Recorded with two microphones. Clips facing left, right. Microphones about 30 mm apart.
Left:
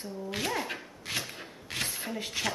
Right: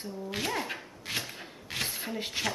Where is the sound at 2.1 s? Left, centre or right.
Centre.